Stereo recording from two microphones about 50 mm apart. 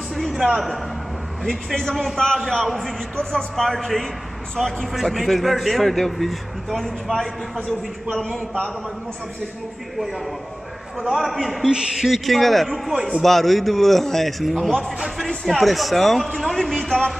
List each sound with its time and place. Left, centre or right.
0.1 s a man's voice: centre
2.6 s a man's voice: centre
9.9 s a man's voice: centre
11.7 s a man's voice: centre
12.1 s a man's voice: centre
12.9 s a man's voice: centre
13.2 s a man's voice: centre